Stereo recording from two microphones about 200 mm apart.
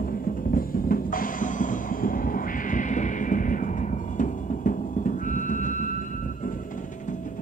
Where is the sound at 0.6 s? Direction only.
45° left (ahead or behind).